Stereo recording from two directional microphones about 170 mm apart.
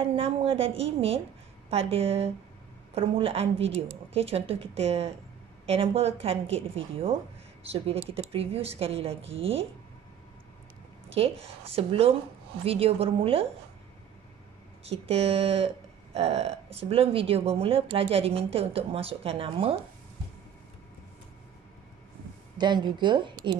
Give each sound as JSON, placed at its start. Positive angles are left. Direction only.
{"t": 0.0, "sound": "speech", "side_deg": -35}
{"t": 11.1, "sound": "speech", "side_deg": -35}
{"t": 14.9, "sound": "speech", "side_deg": -35}
{"t": 22.6, "sound": "speech", "side_deg": -25}